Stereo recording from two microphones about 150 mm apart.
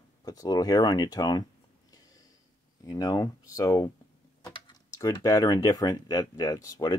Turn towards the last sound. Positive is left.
turn(degrees=25)  # may be behind; listen again after turning